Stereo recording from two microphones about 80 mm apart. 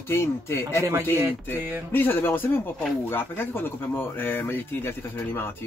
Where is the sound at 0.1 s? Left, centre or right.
Left.